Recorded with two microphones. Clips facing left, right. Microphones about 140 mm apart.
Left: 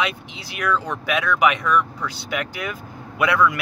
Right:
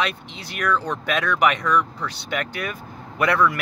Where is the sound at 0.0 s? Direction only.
10° left (ahead or behind).